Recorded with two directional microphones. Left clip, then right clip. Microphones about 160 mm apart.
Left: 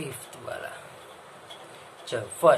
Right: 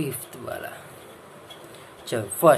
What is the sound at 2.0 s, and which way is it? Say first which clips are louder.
Speech: right 3 dB; 25° right (ahead or behind).